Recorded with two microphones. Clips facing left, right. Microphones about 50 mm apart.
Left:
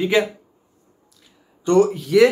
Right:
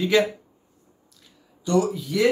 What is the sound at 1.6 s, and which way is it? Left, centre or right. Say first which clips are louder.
Speech: left 6 dB; left.